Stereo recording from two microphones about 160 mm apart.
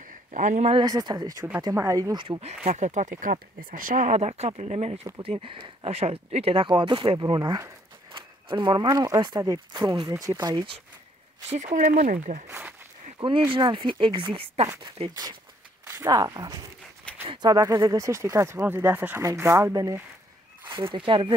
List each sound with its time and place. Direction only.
0.1 s speech: 50° right (ahead or behind)
0.7 s speech: 25° right (ahead or behind)
2.6 s speech: 50° right (ahead or behind); by 10.8 s 30° right (ahead or behind)
11.5 s speech: 50° right (ahead or behind)
12.4 s speech: 15° right (ahead or behind)
13.5 s speech: 30° right (ahead or behind)